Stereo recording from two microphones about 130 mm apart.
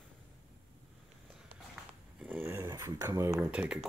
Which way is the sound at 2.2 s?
15° right (ahead or behind).